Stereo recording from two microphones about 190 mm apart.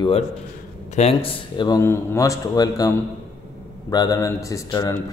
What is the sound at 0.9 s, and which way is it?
Speech, 30° left (ahead or behind).